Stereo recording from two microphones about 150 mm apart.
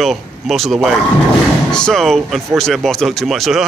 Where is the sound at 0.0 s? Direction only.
Centre (ahead or behind).